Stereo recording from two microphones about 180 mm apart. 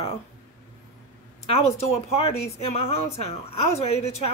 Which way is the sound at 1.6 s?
35° left (ahead or behind).